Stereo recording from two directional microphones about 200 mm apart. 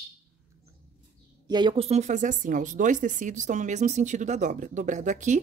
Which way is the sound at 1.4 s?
20° right (ahead or behind).